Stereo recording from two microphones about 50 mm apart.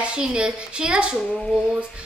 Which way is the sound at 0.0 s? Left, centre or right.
Centre.